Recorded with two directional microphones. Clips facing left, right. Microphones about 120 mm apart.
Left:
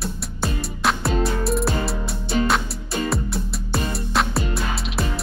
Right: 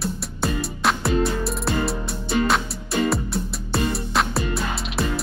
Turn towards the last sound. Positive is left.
turn(degrees=0)  # may be behind; listen again after turning